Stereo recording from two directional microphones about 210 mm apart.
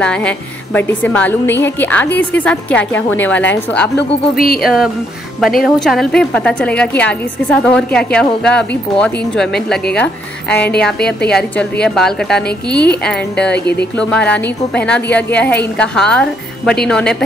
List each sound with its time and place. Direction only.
0.0 s a woman's voice: 5° left (ahead or behind)
3.9 s speech: 45° left (ahead or behind)
5.6 s a woman's voice: centre (ahead or behind)
13.5 s speech: 50° left (ahead or behind)
13.9 s a woman's voice: 5° left (ahead or behind)